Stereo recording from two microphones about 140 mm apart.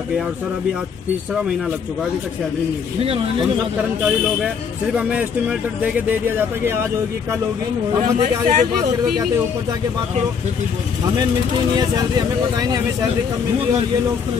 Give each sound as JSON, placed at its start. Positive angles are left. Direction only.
{"t": 4.9, "sound": "speech", "side_deg": -10}
{"t": 8.2, "sound": "a man's voice", "side_deg": -55}
{"t": 11.7, "sound": "speech", "side_deg": -30}